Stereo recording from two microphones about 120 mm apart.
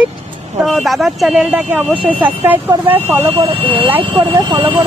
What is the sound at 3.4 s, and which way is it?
Speech, 50° right (ahead or behind).